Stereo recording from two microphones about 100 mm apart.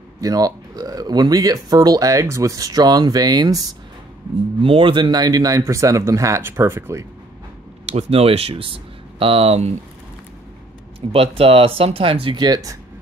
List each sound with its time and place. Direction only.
0.2 s speech: 40° right (ahead or behind)
4.6 s speech: 65° right (ahead or behind); by 7.1 s 30° right (ahead or behind)
7.8 s speech: 90° right
11.0 s speech: 75° right (ahead or behind); by 12.7 s 40° right (ahead or behind)